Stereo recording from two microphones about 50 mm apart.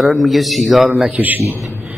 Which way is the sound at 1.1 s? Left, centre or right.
Right.